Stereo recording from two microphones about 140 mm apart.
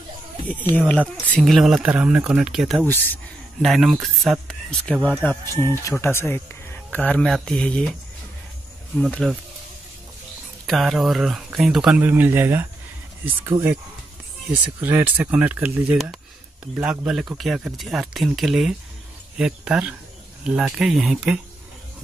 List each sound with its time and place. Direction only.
0.5 s speech: 10° left (ahead or behind); by 2.8 s 5° right (ahead or behind)
2.9 s speech: 15° left (ahead or behind)
3.6 s speech: centre (ahead or behind)
5.2 s speech: 15° left (ahead or behind)
8.9 s speech: 5° left (ahead or behind)
10.7 s speech: centre (ahead or behind)